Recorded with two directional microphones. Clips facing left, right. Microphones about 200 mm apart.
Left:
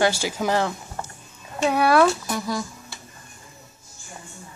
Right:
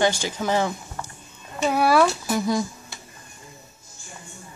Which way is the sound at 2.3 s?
20° right (ahead or behind).